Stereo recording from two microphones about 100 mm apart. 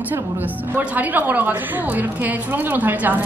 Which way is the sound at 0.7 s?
15° right (ahead or behind).